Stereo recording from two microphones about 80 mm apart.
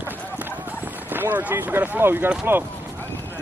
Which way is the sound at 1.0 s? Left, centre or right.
Right.